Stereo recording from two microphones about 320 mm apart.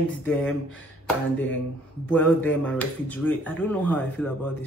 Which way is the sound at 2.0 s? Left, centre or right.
Centre.